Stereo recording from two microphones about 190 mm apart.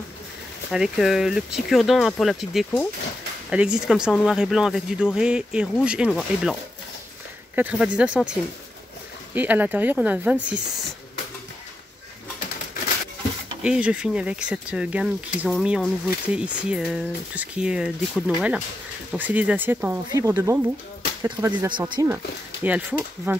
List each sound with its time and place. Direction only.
0.7 s speech: 5° right (ahead or behind)
7.5 s speech: 5° right (ahead or behind)
9.3 s speech: 10° right (ahead or behind)
13.6 s speech: 5° right (ahead or behind)
21.6 s speech: 25° right (ahead or behind)
22.1 s speech: 10° right (ahead or behind)